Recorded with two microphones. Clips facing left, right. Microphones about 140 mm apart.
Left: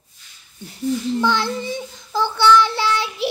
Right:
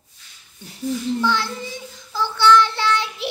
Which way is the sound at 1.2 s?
20° left (ahead or behind).